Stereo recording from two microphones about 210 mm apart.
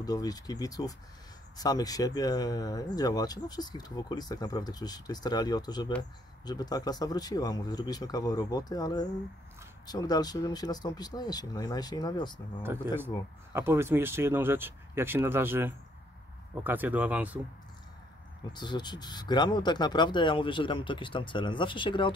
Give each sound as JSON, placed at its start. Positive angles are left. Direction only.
{"t": 0.0, "sound": "speech", "side_deg": 20}
{"t": 12.6, "sound": "speech", "side_deg": -10}
{"t": 18.5, "sound": "speech", "side_deg": 20}